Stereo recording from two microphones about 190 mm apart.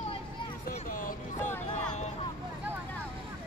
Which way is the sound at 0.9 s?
45° left (ahead or behind).